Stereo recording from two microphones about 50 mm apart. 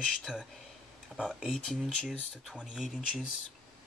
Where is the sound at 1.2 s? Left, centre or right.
Centre.